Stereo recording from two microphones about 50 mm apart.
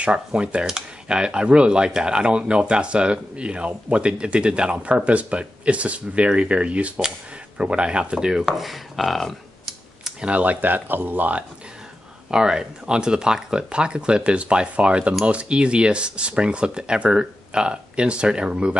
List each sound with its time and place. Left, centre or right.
0.0 s speech: right; by 9.4 s centre
10.2 s speech: right
12.3 s speech: centre